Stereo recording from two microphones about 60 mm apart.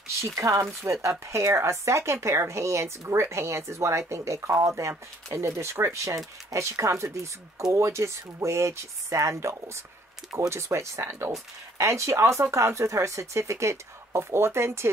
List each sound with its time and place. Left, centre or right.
0.4 s speech: right